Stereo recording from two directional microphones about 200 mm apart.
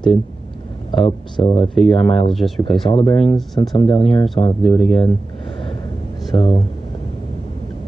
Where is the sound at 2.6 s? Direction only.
25° left (ahead or behind).